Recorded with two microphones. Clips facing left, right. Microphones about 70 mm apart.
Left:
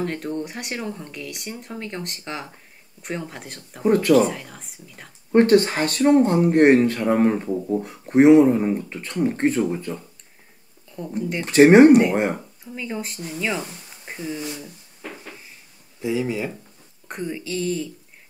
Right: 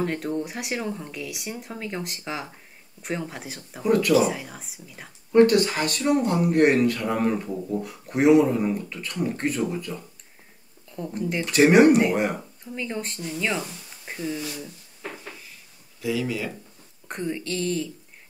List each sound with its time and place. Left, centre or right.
0.0 s speech: centre
3.8 s speech: left
4.1 s speech: centre
5.3 s speech: left
10.9 s speech: centre
11.4 s speech: left
11.9 s speech: centre
16.0 s speech: left
17.1 s speech: centre